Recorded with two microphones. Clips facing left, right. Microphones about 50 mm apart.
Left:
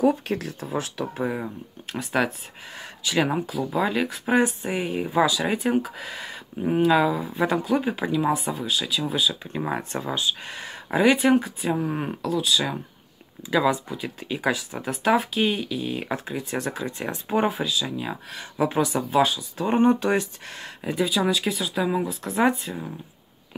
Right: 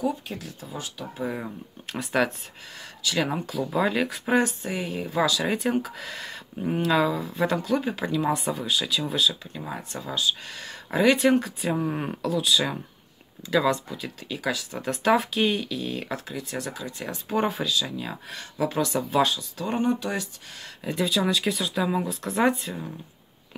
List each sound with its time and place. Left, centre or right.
0.1 s speech: left
1.3 s speech: centre
2.8 s speech: left
3.3 s speech: centre
4.4 s speech: left
9.5 s speech: left
10.0 s speech: left; by 12.7 s centre
13.5 s speech: centre
14.2 s speech: left
14.8 s speech: centre; by 17.5 s left
17.5 s speech: centre
18.9 s speech: centre
19.5 s speech: left
20.8 s speech: centre